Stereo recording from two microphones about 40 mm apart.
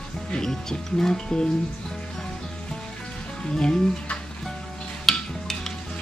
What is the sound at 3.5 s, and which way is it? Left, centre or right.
Speech, left.